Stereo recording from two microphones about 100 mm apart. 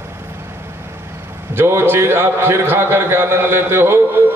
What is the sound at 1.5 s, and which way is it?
A man's voice, 25° right (ahead or behind).